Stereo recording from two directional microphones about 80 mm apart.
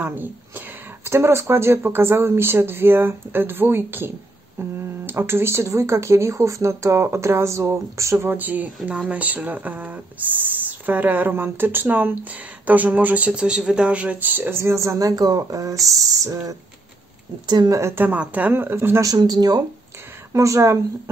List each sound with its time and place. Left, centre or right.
0.0 s speech: right
8.3 s speech: right
15.9 s a sound: right
17.5 s speech: right
17.7 s speech: right
18.0 s speech: centre
19.0 s speech: right
20.3 s speech: right